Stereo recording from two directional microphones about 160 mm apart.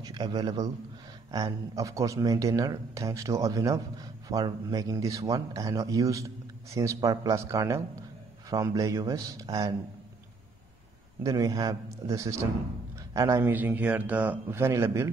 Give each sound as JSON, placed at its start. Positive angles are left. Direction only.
{"t": 0.0, "sound": "a man's voice", "side_deg": -25}
{"t": 11.2, "sound": "a man's voice", "side_deg": -20}